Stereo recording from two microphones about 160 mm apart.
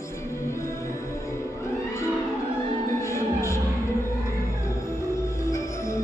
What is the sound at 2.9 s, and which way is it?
Music, 20° left (ahead or behind).